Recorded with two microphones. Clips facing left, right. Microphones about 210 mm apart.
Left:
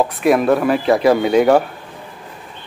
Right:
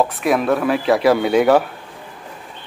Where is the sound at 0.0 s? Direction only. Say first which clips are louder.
Left 3 dB; centre (ahead or behind).